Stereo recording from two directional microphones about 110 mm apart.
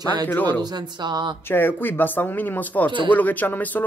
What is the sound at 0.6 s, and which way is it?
Speech, 40° right (ahead or behind).